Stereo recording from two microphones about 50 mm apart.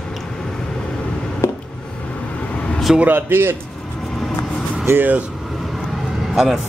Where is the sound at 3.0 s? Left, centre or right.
Right.